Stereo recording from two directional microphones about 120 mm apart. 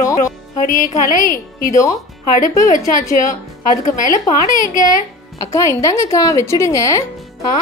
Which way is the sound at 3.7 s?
90° left.